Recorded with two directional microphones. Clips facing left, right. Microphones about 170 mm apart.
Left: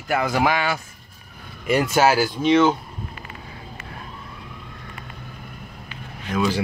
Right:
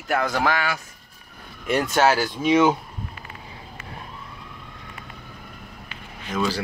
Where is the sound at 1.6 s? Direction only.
5° left (ahead or behind).